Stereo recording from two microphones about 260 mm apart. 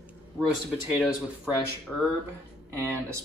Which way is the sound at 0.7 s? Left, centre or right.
Centre.